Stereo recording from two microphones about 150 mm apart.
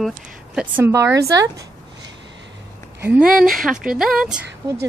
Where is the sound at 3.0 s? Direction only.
5° right (ahead or behind).